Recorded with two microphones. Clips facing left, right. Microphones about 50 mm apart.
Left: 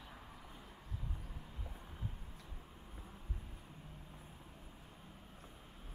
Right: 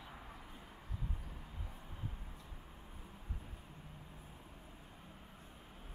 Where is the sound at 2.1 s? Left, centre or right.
Centre.